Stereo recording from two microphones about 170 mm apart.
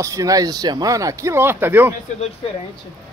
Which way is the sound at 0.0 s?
20° right (ahead or behind).